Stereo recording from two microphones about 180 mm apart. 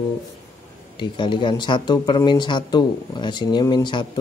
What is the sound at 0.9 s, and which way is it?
Speech, 25° left (ahead or behind).